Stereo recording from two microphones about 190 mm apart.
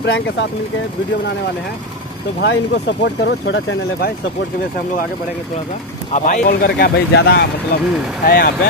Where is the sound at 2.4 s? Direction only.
65° left (ahead or behind).